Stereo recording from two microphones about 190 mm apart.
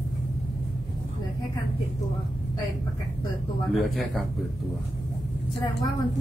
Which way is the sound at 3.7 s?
Centre (ahead or behind).